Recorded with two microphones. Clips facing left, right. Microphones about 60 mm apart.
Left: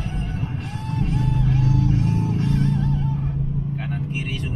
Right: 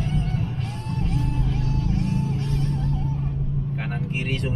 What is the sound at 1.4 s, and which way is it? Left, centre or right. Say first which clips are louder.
Vehicle: left 5 dB; left.